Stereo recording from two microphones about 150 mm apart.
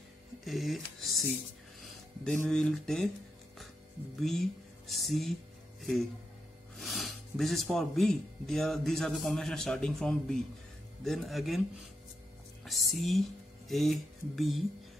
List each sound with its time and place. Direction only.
0.5 s speech: centre (ahead or behind)
2.4 s speech: 5° left (ahead or behind)
4.2 s speech: centre (ahead or behind)
12.6 s music: centre (ahead or behind)
13.7 s speech: centre (ahead or behind)